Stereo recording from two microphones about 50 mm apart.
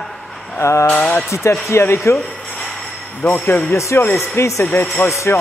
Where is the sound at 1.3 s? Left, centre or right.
Left.